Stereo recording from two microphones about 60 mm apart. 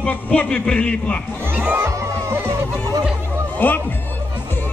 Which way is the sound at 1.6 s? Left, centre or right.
Centre.